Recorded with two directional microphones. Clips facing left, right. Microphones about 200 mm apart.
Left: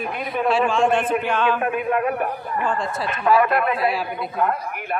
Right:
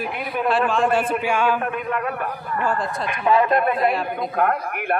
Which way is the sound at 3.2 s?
25° right (ahead or behind).